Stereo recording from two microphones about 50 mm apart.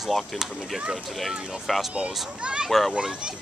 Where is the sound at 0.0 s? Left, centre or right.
Centre.